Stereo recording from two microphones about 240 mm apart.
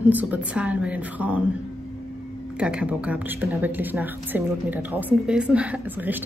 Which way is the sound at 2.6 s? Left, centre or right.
Centre.